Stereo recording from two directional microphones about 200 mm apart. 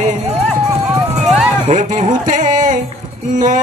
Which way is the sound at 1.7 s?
40° right (ahead or behind).